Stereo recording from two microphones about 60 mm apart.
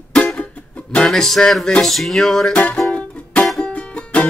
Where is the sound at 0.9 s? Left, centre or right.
Centre.